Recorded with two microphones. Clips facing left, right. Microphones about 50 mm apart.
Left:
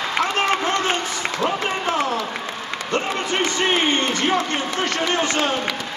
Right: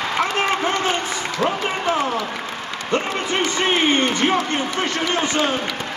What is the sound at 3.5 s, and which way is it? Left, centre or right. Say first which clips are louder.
Speech: right 2 dB; right.